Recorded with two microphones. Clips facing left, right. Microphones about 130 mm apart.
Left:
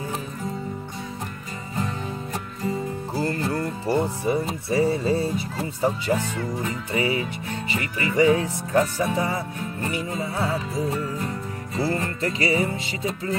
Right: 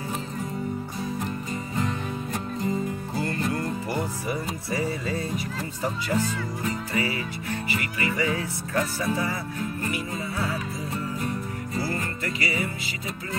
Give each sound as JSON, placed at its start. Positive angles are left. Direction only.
{"t": 3.2, "sound": "speech", "side_deg": 30}
{"t": 7.7, "sound": "music", "side_deg": 25}